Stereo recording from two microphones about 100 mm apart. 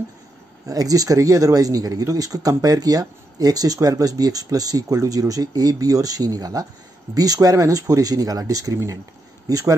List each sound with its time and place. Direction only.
0.7 s speech: 35° right (ahead or behind)